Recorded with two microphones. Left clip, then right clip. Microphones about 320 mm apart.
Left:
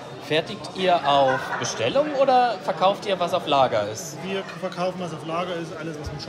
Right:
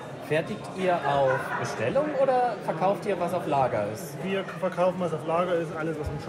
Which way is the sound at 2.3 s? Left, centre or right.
Left.